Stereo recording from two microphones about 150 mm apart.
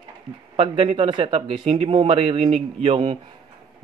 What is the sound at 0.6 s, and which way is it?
Speech, 40° right (ahead or behind).